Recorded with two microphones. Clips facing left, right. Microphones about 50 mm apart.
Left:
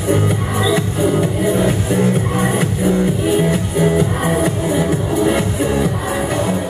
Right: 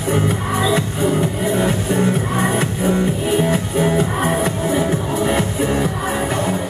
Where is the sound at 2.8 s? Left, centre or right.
Centre.